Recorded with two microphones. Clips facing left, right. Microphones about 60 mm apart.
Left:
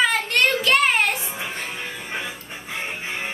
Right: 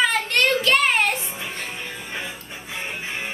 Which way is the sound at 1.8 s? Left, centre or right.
Left.